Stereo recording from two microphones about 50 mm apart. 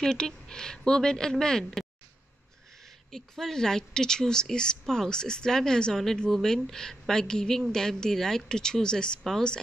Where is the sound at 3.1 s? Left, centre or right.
Centre.